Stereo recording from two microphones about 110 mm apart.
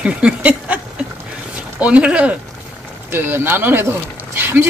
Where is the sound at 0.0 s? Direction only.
10° right (ahead or behind).